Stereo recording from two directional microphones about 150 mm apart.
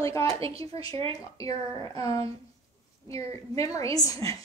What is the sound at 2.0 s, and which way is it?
A woman's voice, 20° left (ahead or behind).